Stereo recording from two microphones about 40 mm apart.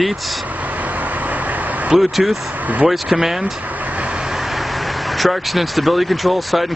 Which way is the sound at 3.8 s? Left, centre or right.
Right.